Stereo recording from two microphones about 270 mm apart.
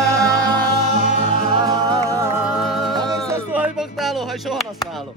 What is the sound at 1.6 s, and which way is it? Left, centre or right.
Music, centre.